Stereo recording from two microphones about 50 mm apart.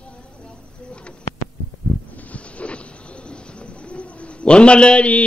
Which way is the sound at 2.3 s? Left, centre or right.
Left.